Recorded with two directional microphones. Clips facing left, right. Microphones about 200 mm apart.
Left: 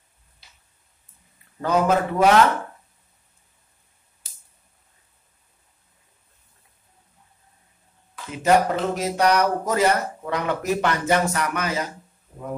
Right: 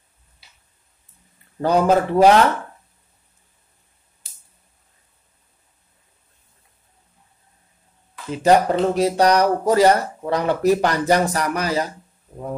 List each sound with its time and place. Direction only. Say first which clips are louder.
1.6 s speech: right 3 dB; 35° right (ahead or behind)
8.3 s speech: right 3 dB; 30° right (ahead or behind)